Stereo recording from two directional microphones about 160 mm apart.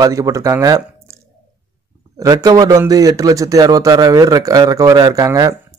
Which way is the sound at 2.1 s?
20° right (ahead or behind).